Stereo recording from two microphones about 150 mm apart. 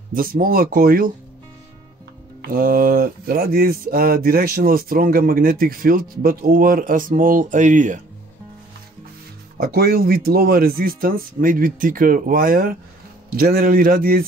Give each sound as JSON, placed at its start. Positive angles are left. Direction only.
{"t": 0.1, "sound": "speech", "side_deg": -70}
{"t": 2.4, "sound": "speech", "side_deg": -70}
{"t": 9.6, "sound": "speech", "side_deg": -85}